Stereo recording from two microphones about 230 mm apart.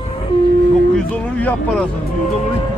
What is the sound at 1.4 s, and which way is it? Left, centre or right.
Speech, centre.